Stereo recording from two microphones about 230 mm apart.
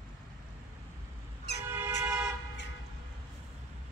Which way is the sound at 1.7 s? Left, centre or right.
Centre.